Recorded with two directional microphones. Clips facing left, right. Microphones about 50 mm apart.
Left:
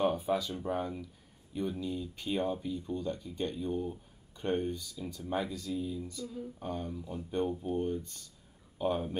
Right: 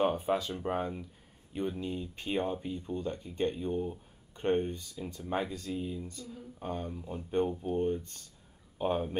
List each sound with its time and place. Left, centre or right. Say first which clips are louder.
0.0 s speech: right 1 dB; right